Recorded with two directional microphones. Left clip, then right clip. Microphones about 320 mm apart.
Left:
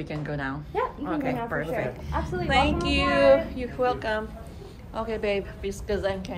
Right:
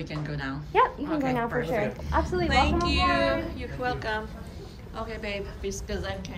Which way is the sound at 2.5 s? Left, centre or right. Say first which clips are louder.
Left 4 dB; centre.